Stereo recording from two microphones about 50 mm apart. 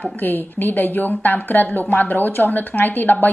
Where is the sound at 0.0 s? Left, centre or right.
Left.